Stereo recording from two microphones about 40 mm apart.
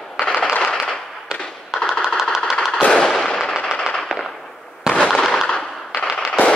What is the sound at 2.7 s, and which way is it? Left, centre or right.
Machine gun, left.